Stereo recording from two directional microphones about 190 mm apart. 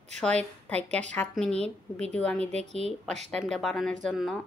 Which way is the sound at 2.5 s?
35° right (ahead or behind).